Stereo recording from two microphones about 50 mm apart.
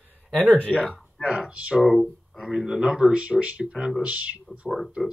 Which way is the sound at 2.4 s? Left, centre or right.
Centre.